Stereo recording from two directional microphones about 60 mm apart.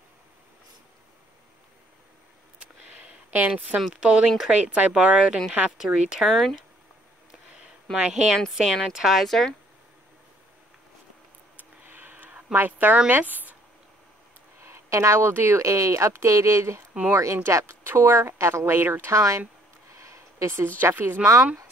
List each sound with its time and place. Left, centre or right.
2.8 s a sound: right
3.9 s speech: centre
5.9 s speech: right
6.2 s a woman's voice: centre
7.5 s a sound: centre
8.5 s a woman's voice: centre
11.8 s a sound: right
12.5 s speech: right
14.6 s speech: right
15.6 s speech: right
19.1 s speech: right
20.0 s a sound: right
20.5 s a woman's voice: right